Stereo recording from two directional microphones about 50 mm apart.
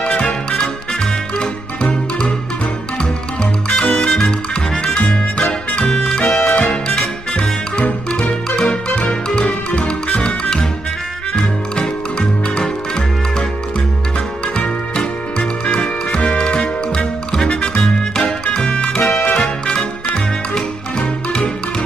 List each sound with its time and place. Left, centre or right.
0.0 s music: centre
3.6 s music: left
6.5 s music: left
11.7 s music: centre
14.6 s music: left